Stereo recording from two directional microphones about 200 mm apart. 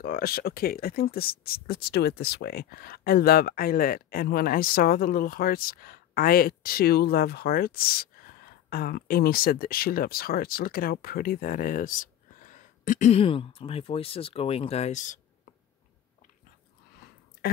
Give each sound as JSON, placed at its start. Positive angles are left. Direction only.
{"t": 0.0, "sound": "speech", "side_deg": 50}